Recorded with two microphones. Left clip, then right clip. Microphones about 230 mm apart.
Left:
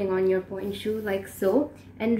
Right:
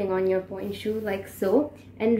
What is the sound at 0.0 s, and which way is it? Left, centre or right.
A woman's voice, centre.